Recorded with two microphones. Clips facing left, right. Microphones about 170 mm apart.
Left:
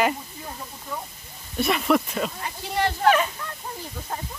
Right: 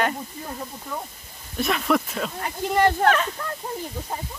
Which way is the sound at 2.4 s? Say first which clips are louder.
Right 10 dB; 55° right (ahead or behind).